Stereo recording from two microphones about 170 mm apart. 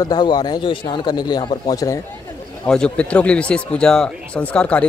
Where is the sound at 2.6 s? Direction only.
5° left (ahead or behind).